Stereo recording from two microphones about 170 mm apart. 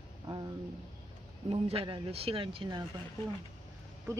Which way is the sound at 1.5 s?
30° right (ahead or behind).